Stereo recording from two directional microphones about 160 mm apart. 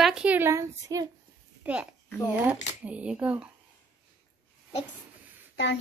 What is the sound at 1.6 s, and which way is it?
A child's voice, 5° right (ahead or behind).